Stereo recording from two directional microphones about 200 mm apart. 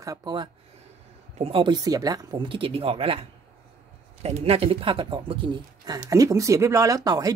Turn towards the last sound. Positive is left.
turn(degrees=-20)  # may be behind; listen again after turning